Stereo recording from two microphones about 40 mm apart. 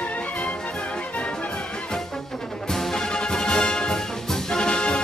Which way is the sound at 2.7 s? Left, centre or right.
Centre.